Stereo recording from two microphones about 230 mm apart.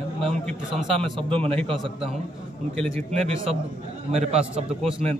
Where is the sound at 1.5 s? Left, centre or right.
Centre.